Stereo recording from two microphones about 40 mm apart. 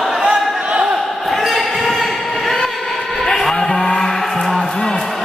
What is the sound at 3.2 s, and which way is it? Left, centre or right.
Cattle, centre.